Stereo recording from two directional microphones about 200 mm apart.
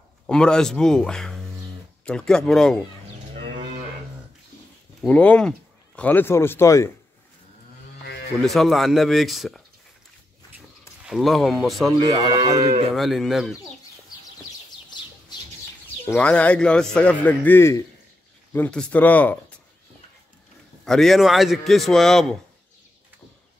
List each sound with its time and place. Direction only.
0.3 s a man's voice: 5° left (ahead or behind)
5.0 s a man's voice: 5° left (ahead or behind)
8.5 s a man's voice: centre (ahead or behind)
11.1 s a man's voice: centre (ahead or behind)
12.0 s speech: 20° right (ahead or behind)
12.9 s a man's voice: centre (ahead or behind)
16.1 s a man's voice: 5° left (ahead or behind)
20.8 s a man's voice: centre (ahead or behind)